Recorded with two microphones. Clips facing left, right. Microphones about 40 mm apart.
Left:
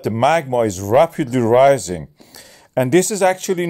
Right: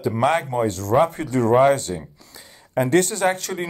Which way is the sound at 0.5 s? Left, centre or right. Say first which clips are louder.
Left 5 dB; left.